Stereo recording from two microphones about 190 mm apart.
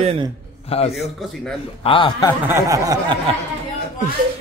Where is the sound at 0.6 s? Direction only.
30° left (ahead or behind).